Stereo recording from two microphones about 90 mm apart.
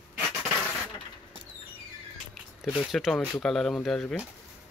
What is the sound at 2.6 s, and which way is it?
Speech, 5° right (ahead or behind).